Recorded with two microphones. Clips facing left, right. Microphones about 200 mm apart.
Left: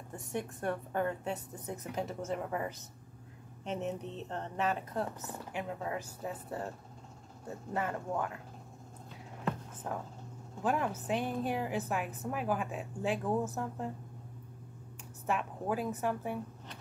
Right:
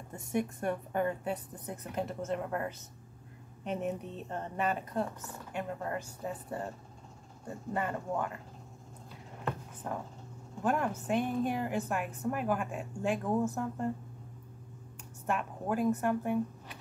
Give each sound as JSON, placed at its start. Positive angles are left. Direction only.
{"t": 0.6, "sound": "speech", "side_deg": -10}
{"t": 9.9, "sound": "speech", "side_deg": 0}
{"t": 15.2, "sound": "speech", "side_deg": 0}